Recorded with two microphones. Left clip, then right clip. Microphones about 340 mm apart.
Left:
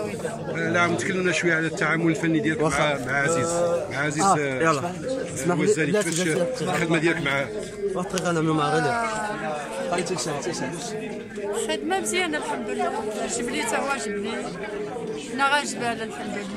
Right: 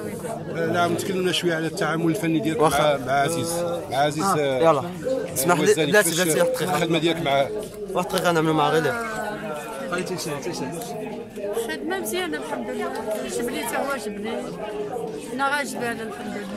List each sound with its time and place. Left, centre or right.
0.6 s a man's voice: centre
5.4 s a man's voice: right
6.8 s speech: centre
7.9 s a man's voice: right
11.5 s a man's voice: centre
15.3 s a man's voice: centre